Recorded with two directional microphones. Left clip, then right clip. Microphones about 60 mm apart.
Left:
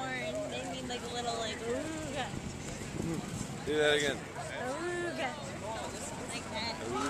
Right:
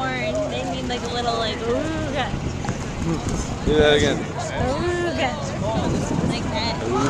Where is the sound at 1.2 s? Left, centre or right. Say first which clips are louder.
Right 13 dB; left.